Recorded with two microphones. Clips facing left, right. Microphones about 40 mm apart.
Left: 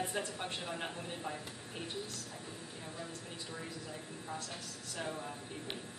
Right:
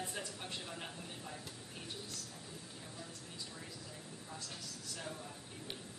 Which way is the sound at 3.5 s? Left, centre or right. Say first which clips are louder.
Left 6 dB; left.